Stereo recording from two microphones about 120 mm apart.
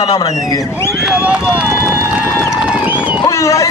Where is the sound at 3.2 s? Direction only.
25° left (ahead or behind).